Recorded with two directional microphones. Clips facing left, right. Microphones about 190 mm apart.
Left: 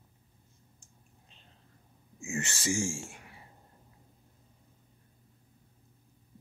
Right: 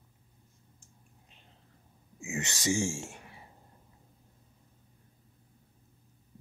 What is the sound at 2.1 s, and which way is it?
Speech, 20° right (ahead or behind).